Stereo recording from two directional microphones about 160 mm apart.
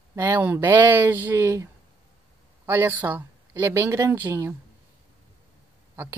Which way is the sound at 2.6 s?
15° right (ahead or behind).